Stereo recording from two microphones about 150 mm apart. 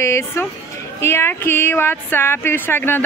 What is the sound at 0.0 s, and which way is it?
A woman's voice, 20° left (ahead or behind).